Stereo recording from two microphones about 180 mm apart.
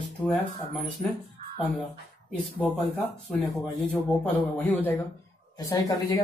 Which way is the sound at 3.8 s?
5° left (ahead or behind).